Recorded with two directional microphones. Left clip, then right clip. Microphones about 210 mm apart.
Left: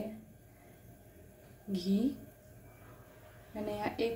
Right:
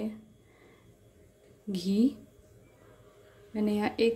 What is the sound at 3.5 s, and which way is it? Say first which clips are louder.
Speech: right 6 dB; 40° right (ahead or behind).